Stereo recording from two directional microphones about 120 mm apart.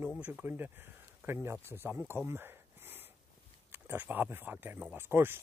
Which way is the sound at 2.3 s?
20° right (ahead or behind).